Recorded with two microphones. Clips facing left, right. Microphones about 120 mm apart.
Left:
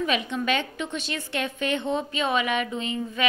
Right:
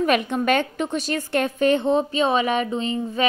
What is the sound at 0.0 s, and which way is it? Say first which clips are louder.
A woman's voice: right 6 dB; 50° right (ahead or behind).